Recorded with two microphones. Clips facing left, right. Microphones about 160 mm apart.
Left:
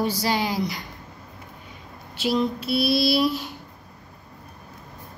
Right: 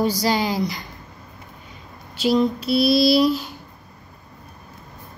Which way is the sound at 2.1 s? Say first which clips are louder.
Right 5 dB; 40° right (ahead or behind).